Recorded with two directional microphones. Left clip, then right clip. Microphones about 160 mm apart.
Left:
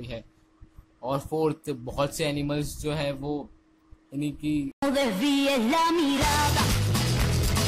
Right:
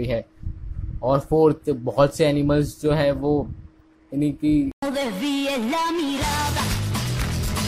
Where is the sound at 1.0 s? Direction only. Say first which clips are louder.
Right 9 dB; 15° right (ahead or behind).